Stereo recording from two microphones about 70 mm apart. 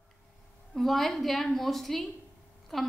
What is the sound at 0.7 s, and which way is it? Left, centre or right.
A woman's voice, centre.